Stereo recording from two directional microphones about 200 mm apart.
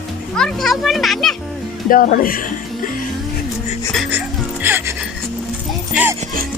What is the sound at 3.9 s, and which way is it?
Music, 5° right (ahead or behind).